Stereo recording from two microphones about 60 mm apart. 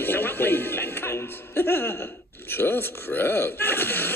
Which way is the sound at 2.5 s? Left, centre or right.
Left.